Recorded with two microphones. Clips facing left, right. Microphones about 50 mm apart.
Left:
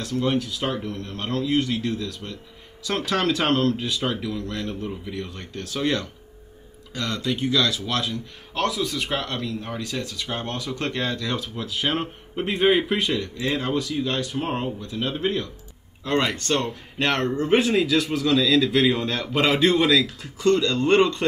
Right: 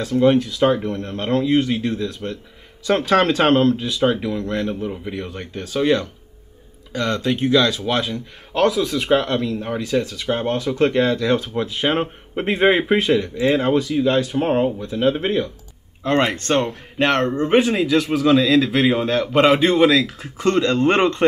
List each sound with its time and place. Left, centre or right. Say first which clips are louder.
0.0 s speech: right 8 dB; right
0.6 s speech: right 14 dB; right
1.0 s speech: right 7 dB; right
8.5 s a man's voice: right 7 dB; centre
8.9 s speech: right 9 dB; right
13.1 s speech: right 8 dB; right
13.6 s speech: right 7 dB; right
13.8 s speech: right 8 dB; centre
14.4 s a man's voice: right 8 dB; centre
15.0 s speech: right 7 dB; right
16.6 s a man's voice: right 5 dB; centre
18.2 s a man's voice: right 5 dB; right; by 20.0 s centre
20.0 s speech: right 3 dB; right
20.3 s speech: right 3 dB; right